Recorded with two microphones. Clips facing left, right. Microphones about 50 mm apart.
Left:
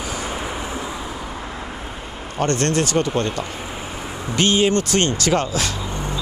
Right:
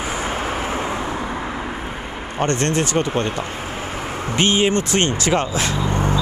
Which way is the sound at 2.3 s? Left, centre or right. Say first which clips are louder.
Even; right.